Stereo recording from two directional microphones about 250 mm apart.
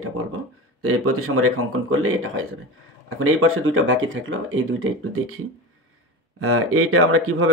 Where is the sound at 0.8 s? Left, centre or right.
Right.